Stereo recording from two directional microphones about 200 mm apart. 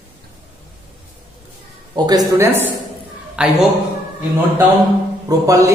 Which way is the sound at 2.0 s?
15° right (ahead or behind).